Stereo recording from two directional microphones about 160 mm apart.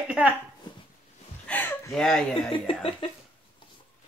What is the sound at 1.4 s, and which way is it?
Speech, 10° left (ahead or behind).